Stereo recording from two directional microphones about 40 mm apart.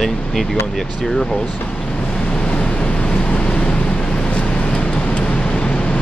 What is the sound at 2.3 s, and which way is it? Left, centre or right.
Waves, left.